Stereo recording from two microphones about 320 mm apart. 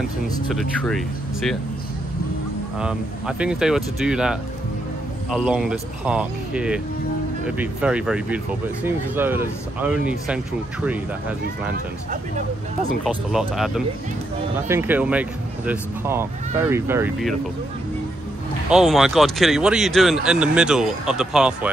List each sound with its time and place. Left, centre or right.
0.5 s speech: centre
2.8 s speech: centre
11.7 s speech: right
13.0 s speech: centre
18.7 s speech: centre